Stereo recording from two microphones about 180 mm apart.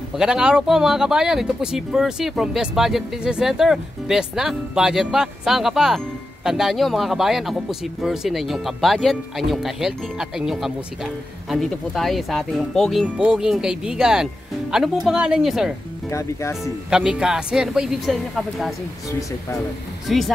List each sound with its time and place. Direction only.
0.2 s speech: 5° right (ahead or behind)
16.1 s speech: 15° left (ahead or behind)
16.9 s speech: 5° right (ahead or behind)
20.1 s speech: centre (ahead or behind)